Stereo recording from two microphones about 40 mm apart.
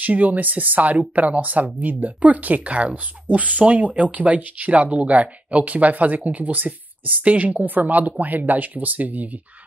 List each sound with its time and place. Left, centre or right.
0.0 s speech: right